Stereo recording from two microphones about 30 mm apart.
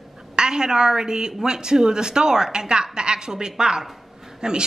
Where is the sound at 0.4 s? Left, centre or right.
Right.